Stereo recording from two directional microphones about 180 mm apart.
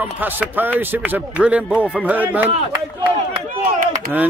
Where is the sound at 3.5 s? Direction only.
50° right (ahead or behind).